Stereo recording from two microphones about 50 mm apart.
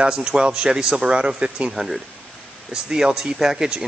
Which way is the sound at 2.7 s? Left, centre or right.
Centre.